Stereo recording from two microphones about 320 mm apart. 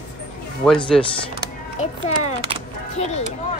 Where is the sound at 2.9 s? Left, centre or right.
Centre.